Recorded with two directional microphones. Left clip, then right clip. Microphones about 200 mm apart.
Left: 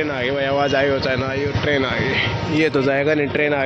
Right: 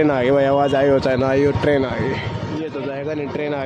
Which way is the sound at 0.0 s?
35° right (ahead or behind).